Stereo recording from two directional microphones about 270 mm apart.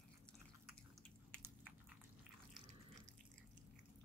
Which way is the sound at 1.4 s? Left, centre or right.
Centre.